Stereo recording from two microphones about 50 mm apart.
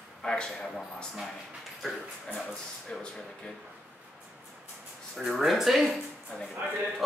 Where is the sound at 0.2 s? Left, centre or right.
Centre.